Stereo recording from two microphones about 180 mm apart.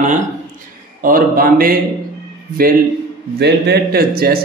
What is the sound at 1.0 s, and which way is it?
Speech, 50° right (ahead or behind).